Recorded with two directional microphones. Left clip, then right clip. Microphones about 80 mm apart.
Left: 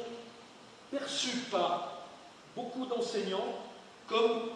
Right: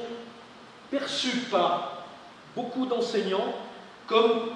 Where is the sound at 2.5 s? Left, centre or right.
Left.